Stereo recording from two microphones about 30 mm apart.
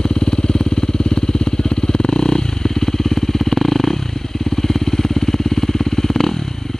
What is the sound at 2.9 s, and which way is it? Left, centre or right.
Motorcycle, centre.